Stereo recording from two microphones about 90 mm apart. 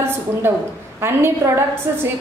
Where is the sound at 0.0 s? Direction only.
25° right (ahead or behind).